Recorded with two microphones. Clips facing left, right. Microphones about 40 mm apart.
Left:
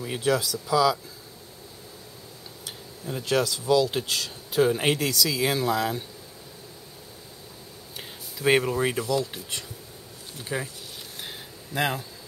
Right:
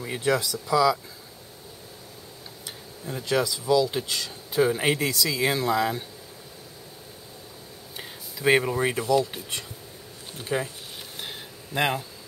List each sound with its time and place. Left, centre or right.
0.0 s speech: centre
0.7 s speech: right
3.1 s speech: centre
3.3 s speech: centre
8.0 s speech: centre
9.0 s speech: right
10.4 s speech: centre
11.1 s a sound: centre